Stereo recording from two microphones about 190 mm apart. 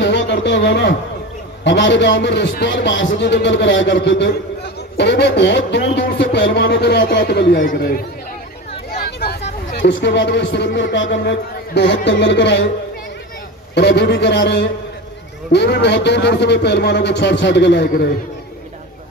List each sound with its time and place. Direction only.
0.0 s a sound: 65° left (ahead or behind)
1.6 s a man's voice: 65° left (ahead or behind); by 8.0 s 50° left (ahead or behind)
9.0 s vehicle: 55° left (ahead or behind)
9.8 s a man's voice: 65° left (ahead or behind)
13.7 s a man's voice: 60° left (ahead or behind)